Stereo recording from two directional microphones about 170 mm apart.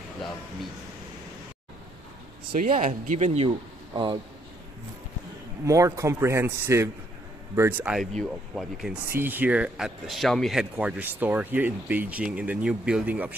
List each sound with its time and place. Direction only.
2.7 s a man's voice: 45° right (ahead or behind); by 4.2 s 30° right (ahead or behind)
5.7 s speech: 20° right (ahead or behind)
8.2 s speech: centre (ahead or behind)
9.1 s speech: 10° right (ahead or behind)